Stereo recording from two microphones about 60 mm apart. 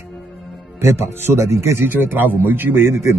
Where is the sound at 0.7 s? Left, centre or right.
Right.